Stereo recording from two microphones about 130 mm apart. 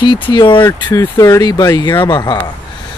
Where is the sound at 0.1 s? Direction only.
35° left (ahead or behind).